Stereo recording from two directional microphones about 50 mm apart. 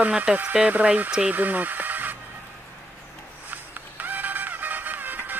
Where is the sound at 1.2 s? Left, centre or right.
Right.